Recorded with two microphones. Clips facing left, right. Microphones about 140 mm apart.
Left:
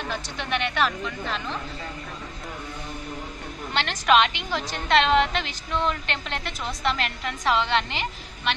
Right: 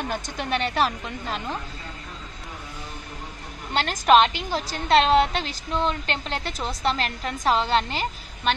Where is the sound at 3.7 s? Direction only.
40° right (ahead or behind).